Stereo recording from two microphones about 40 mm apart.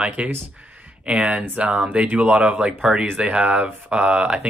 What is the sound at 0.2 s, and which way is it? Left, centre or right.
Speech, right.